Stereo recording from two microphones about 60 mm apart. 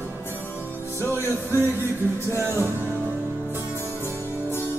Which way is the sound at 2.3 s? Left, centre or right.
Right.